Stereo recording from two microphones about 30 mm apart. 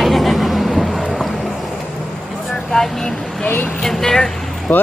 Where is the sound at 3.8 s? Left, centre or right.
Centre.